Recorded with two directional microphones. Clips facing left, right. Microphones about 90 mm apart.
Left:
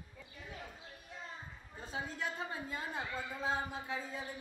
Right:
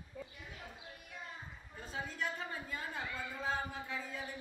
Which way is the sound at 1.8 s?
25° left (ahead or behind).